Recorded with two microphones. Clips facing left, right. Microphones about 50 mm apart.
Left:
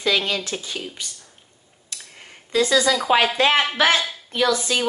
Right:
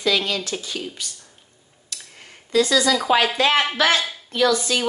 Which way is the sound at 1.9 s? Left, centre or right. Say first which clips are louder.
Even; left.